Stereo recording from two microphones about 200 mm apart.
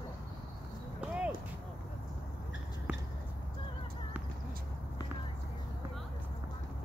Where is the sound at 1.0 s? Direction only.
5° right (ahead or behind).